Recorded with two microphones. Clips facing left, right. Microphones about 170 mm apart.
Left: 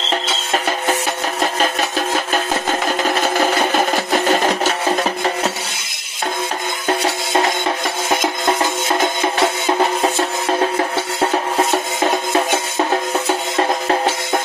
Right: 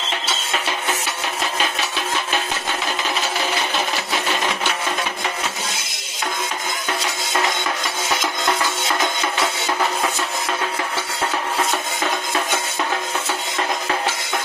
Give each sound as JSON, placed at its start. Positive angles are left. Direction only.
{"t": 0.5, "sound": "music", "side_deg": 45}
{"t": 1.4, "sound": "a sound", "side_deg": 45}
{"t": 9.4, "sound": "music", "side_deg": 25}
{"t": 10.6, "sound": "music", "side_deg": 40}
{"t": 13.6, "sound": "music", "side_deg": 40}